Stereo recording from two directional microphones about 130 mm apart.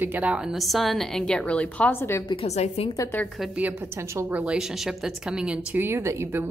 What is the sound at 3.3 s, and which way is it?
A woman's voice, 10° right (ahead or behind).